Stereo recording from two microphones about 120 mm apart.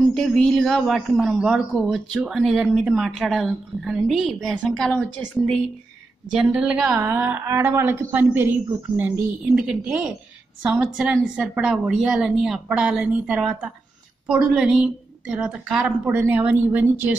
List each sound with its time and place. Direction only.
0.1 s speech: 5° left (ahead or behind)
6.3 s a woman's voice: 10° right (ahead or behind)
10.7 s a woman's voice: 10° right (ahead or behind)